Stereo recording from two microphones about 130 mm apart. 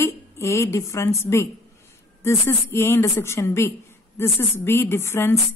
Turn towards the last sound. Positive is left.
turn(degrees=20)  # may be behind; listen again after turning